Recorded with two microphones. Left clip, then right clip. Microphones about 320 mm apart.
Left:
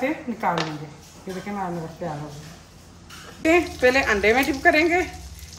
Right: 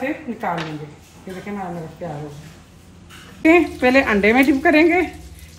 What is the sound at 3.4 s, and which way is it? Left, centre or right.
Speech, centre.